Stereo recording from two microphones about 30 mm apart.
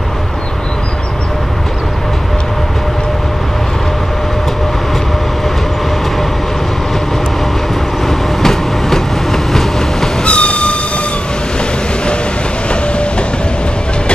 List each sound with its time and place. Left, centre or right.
8.4 s train: centre
10.2 s train: left